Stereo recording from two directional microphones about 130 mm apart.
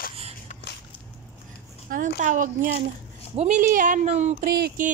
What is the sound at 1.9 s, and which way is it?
Speech, 85° right.